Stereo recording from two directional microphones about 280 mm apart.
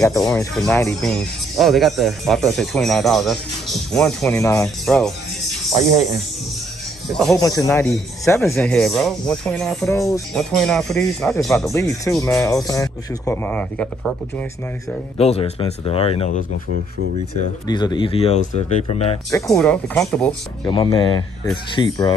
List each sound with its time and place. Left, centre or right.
0.0 s speech: centre
7.3 s speech: centre
10.3 s speech: centre
15.1 s speech: left
17.6 s speech: centre
19.3 s speech: centre
20.6 s speech: centre